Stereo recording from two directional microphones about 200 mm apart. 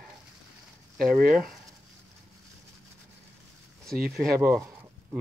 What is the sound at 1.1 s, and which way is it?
Speech, 45° right (ahead or behind).